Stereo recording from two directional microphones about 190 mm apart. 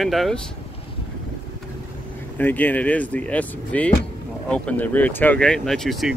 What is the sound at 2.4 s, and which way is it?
Speech, 10° left (ahead or behind).